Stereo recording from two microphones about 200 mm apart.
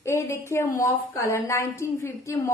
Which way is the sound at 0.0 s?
15° left (ahead or behind).